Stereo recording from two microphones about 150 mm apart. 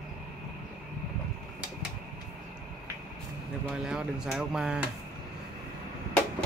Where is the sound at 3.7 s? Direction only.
5° right (ahead or behind).